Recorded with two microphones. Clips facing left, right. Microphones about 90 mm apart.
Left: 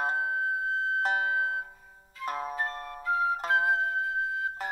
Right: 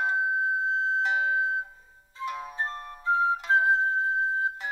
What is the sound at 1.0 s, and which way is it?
Music, 40° left (ahead or behind).